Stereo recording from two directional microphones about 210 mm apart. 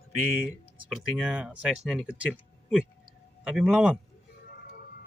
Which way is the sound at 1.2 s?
5° right (ahead or behind).